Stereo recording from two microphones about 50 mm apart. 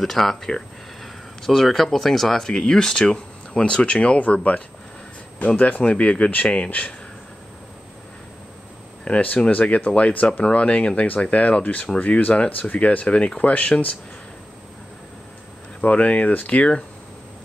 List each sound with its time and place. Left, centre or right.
0.0 s speech: centre; by 6.9 s left
9.0 s speech: left
15.8 s speech: left